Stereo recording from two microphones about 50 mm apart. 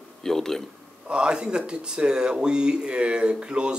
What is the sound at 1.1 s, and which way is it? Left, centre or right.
Speech, centre.